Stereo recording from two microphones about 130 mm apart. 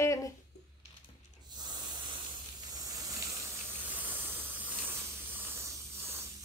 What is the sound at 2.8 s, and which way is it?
Hiss, 25° right (ahead or behind).